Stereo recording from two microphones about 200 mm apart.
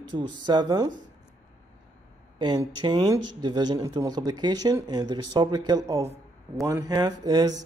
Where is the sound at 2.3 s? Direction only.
20° right (ahead or behind).